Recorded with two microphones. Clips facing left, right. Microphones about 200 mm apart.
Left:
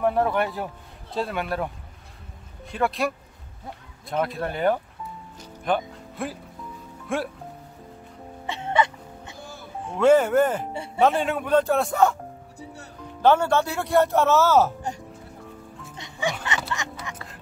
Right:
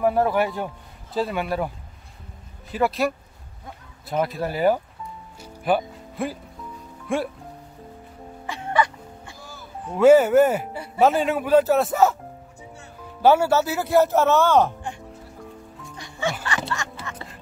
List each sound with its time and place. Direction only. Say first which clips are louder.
0.0 s speech: right 2 dB; 5° right (ahead or behind)
2.7 s speech: right 3 dB; centre (ahead or behind)
4.1 s speech: right 2 dB; 5° right (ahead or behind)
5.4 s music: right 3 dB; 5° right (ahead or behind)
7.1 s speech: right 3 dB; centre (ahead or behind)
8.5 s music: even; 25° left (ahead or behind)
9.9 s speech: right 4 dB; 5° right (ahead or behind)
13.2 s speech: right 2 dB; 10° right (ahead or behind)
16.0 s music: right 1 dB; 15° left (ahead or behind)